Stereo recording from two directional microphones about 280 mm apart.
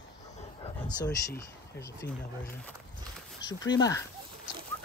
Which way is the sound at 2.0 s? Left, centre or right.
Left.